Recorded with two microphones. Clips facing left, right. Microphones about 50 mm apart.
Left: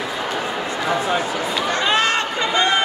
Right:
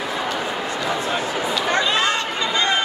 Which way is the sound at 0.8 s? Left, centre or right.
Centre.